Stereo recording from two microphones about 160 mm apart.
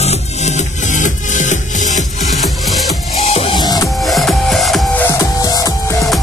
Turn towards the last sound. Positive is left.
turn(degrees=20)  # may be behind; listen again after turning